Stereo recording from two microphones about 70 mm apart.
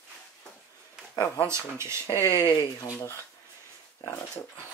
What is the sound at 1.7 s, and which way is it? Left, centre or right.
Speech, right.